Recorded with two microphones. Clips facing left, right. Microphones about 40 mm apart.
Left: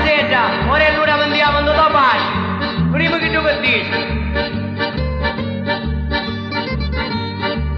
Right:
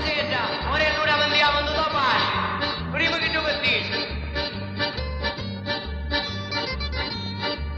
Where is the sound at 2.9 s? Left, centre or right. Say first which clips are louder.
Left 7 dB; left.